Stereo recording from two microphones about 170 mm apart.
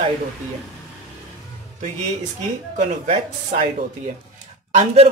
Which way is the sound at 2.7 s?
45° right (ahead or behind).